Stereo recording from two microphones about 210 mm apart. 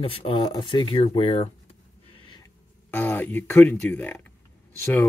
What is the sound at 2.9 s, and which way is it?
Speech, 10° left (ahead or behind).